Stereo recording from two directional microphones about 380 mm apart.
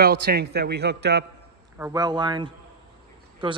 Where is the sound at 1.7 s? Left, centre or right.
Centre.